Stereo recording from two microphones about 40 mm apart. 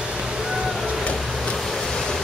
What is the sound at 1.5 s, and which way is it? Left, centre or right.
Waves, centre.